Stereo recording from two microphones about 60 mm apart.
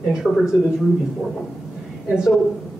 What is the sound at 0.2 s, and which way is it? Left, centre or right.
Speech, centre.